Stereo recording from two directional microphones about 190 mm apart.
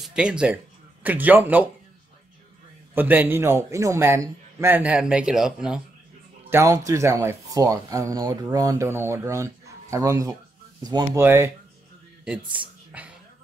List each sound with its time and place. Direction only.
0.0 s speech: 5° right (ahead or behind)
2.9 s speech: 10° right (ahead or behind)
6.5 s speech: 15° right (ahead or behind)